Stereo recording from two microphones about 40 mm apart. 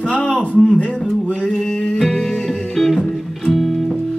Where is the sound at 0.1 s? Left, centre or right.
Left.